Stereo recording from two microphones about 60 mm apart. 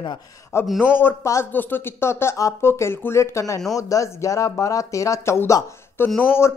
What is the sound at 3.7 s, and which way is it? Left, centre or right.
Speech, left.